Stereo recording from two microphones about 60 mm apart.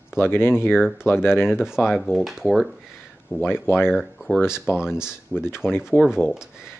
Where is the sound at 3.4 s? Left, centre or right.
Left.